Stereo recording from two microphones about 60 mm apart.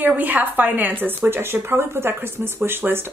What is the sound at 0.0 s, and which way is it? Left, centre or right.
A woman's voice, right.